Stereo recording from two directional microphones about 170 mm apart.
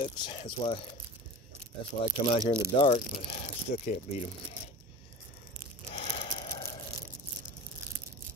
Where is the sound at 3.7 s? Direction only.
50° left (ahead or behind).